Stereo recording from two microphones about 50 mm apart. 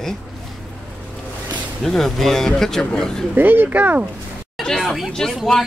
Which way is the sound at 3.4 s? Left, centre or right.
Right.